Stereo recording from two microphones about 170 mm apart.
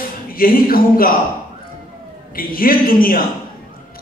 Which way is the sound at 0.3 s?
55° left (ahead or behind).